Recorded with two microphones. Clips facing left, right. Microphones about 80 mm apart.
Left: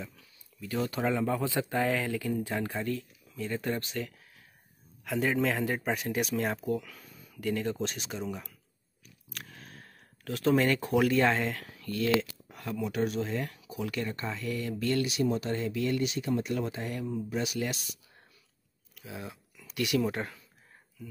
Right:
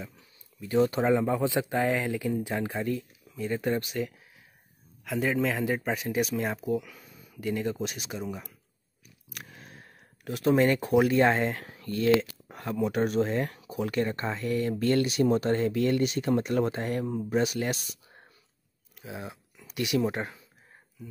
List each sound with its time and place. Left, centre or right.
0.0 s speech: right
5.0 s speech: centre; by 20.4 s right